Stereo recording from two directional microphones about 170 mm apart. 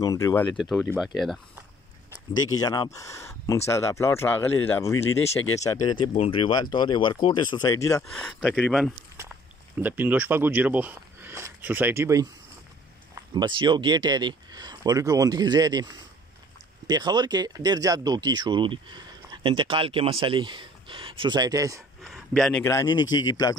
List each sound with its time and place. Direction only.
0.0 s speech: 20° left (ahead or behind)
0.6 s speech: centre (ahead or behind)
2.4 s speech: 20° left (ahead or behind)
8.2 s speech: 5° left (ahead or behind)
9.8 s speech: 10° right (ahead or behind)
13.3 s speech: 25° right (ahead or behind)
22.1 s speech: 5° left (ahead or behind)
22.7 s speech: 20° left (ahead or behind)